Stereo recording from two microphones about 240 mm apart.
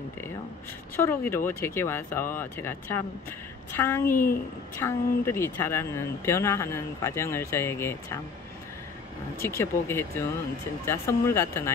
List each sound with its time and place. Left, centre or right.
0.9 s speech: centre
4.1 s a woman's voice: left
4.7 s speech: centre
9.4 s speech: centre